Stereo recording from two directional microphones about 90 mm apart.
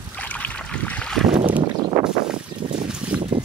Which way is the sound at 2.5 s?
35° right (ahead or behind).